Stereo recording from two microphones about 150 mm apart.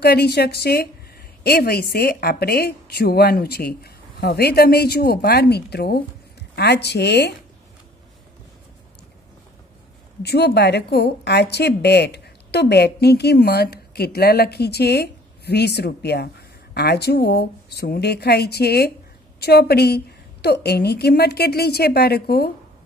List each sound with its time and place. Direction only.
0.0 s a woman's voice: 90° left
10.2 s a woman's voice: 90° left